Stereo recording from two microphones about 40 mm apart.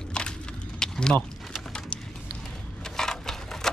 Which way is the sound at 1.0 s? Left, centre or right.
Centre.